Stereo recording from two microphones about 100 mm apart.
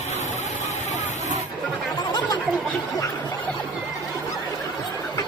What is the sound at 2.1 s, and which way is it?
Chatter, 45° left (ahead or behind).